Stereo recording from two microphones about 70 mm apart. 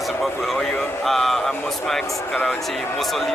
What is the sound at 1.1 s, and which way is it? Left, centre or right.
Speech, centre.